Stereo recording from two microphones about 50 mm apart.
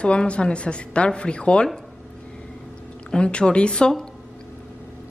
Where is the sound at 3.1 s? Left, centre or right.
Left.